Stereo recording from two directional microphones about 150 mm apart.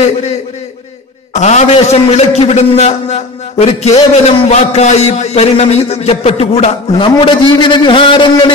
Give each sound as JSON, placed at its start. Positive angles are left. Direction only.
{"t": 1.3, "sound": "a man's voice", "side_deg": 50}